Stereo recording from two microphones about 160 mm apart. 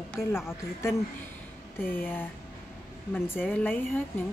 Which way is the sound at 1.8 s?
15° left (ahead or behind).